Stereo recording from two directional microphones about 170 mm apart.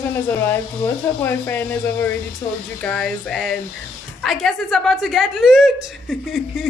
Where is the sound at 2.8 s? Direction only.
5° left (ahead or behind).